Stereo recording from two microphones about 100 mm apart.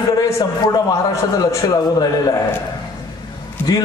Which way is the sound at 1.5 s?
35° left (ahead or behind).